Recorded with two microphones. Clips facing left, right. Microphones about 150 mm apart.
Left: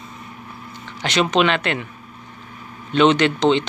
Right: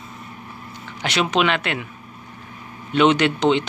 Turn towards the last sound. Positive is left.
turn(degrees=-10)  # may be behind; listen again after turning